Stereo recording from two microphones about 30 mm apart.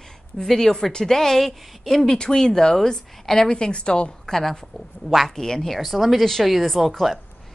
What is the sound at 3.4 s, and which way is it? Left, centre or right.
Speech, left.